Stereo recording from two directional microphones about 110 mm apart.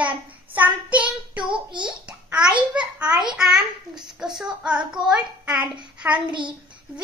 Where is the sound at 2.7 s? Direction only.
10° right (ahead or behind).